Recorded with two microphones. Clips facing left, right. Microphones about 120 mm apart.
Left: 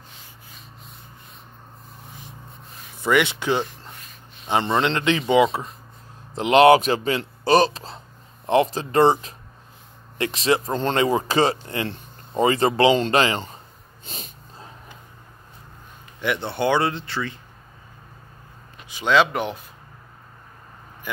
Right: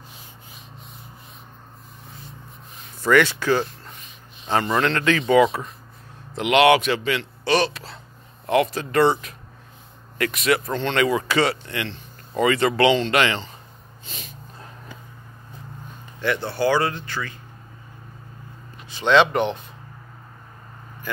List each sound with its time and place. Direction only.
3.0 s speech: 15° left (ahead or behind); by 13.4 s 30° left (ahead or behind)
14.0 s a sound: 40° left (ahead or behind)
16.2 s speech: 20° left (ahead or behind)
18.9 s speech: 10° left (ahead or behind)